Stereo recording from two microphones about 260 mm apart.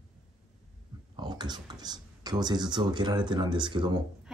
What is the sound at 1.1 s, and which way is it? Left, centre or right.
Speech, centre.